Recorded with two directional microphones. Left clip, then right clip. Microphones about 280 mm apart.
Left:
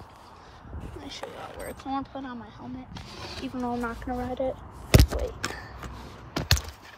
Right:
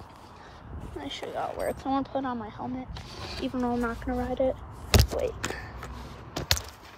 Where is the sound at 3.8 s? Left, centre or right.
Centre.